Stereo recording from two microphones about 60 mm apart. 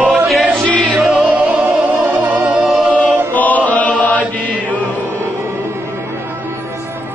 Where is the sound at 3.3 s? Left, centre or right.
Left.